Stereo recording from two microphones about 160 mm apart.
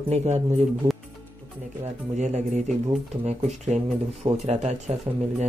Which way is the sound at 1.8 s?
45° right (ahead or behind).